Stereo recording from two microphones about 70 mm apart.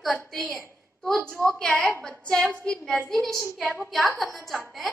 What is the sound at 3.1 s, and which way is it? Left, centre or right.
Speech, centre.